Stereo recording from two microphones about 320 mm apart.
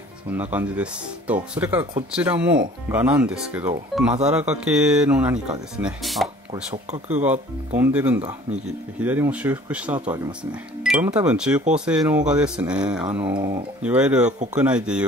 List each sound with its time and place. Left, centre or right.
0.3 s speech: centre
6.5 s speech: centre
7.1 s speech: centre
8.2 s speech: centre
9.0 s speech: centre